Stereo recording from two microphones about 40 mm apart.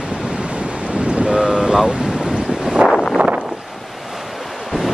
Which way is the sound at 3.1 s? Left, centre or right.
Right.